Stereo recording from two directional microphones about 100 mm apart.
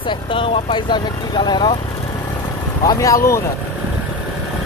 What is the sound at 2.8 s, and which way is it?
Speech, 35° left (ahead or behind).